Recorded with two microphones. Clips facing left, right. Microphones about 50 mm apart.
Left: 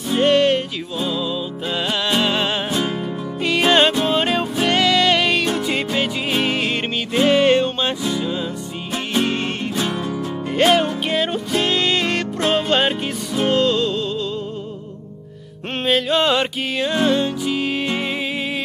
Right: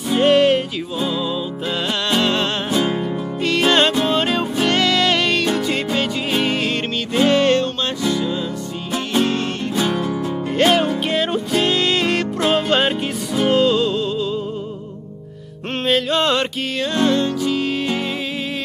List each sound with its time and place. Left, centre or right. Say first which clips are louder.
0.1 s music: right 2 dB; centre
1.9 s music: right 1 dB; centre
10.5 s music: even; centre
15.8 s music: even; centre